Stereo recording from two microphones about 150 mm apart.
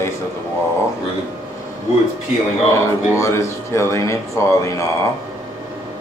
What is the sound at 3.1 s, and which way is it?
Speech, 20° left (ahead or behind).